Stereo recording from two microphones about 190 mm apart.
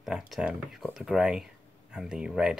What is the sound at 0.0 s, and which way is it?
Speech, 5° right (ahead or behind).